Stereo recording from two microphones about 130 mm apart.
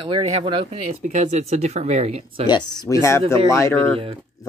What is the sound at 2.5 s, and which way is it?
Speech, 35° left (ahead or behind).